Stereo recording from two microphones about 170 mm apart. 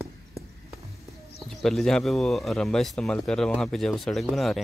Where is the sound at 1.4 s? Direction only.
Centre (ahead or behind).